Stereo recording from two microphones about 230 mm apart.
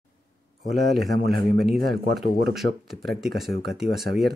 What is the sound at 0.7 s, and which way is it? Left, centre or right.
Speech, centre.